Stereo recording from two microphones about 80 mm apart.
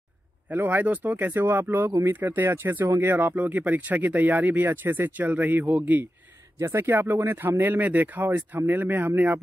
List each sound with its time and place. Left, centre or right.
0.5 s speech: right
6.6 s speech: right
6.9 s speech: right